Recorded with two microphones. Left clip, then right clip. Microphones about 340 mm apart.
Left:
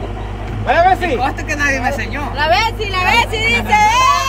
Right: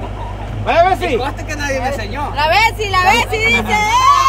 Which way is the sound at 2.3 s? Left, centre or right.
Right.